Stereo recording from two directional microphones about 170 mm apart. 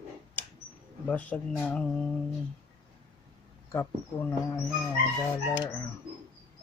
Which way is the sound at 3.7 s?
15° left (ahead or behind).